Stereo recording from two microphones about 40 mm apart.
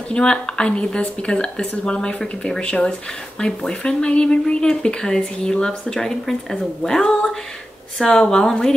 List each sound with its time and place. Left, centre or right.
0.1 s a woman's voice: left